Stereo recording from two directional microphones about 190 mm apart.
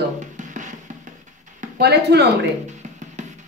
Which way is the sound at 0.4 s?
40° right (ahead or behind).